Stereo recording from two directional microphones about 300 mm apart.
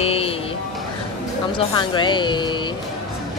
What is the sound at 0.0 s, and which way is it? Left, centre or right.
Vehicle, centre.